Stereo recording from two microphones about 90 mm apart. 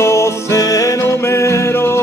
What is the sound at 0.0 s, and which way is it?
Music, 30° left (ahead or behind).